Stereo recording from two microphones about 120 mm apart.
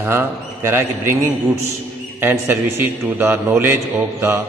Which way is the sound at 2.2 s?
20° right (ahead or behind).